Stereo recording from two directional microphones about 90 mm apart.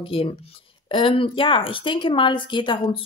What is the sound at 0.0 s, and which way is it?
Speech, 90° left.